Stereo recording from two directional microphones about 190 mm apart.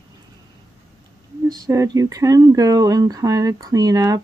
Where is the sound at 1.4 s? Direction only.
20° right (ahead or behind).